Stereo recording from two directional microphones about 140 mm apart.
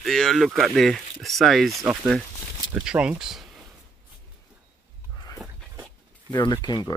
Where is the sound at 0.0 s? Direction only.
Centre (ahead or behind).